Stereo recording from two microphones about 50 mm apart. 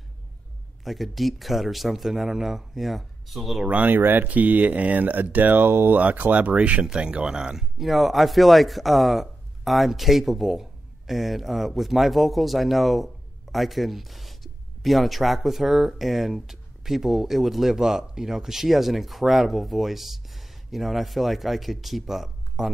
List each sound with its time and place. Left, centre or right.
0.8 s speech: centre
3.6 s speech: right; by 22.7 s centre